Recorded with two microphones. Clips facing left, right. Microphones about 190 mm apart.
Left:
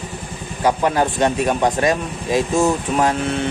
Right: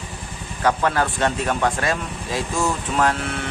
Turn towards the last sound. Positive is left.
turn(degrees=20)  # may be behind; listen again after turning